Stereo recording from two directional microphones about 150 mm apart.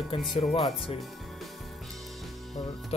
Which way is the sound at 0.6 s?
Centre (ahead or behind).